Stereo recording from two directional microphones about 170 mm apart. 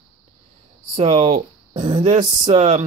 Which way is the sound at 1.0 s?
40° right (ahead or behind).